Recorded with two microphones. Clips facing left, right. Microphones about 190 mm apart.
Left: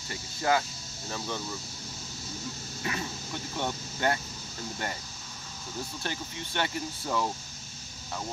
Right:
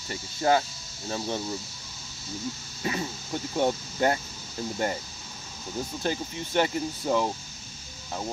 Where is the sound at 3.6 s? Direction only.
30° right (ahead or behind).